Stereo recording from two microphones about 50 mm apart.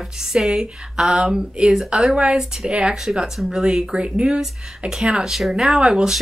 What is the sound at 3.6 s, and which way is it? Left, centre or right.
A woman's voice, centre.